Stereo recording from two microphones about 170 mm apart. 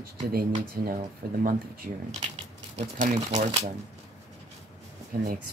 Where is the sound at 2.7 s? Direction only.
45° right (ahead or behind).